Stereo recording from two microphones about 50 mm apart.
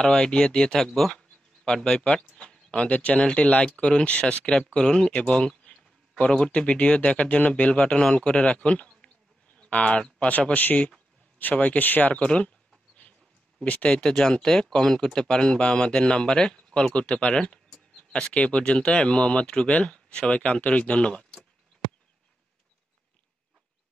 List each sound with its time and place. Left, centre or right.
0.0 s speech: centre
2.3 s a sound: centre
2.9 s speech: left
7.8 s speech: centre
10.5 s speech: left; by 21.4 s centre